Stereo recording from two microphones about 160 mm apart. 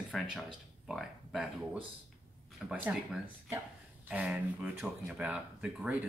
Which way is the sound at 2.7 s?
10° right (ahead or behind).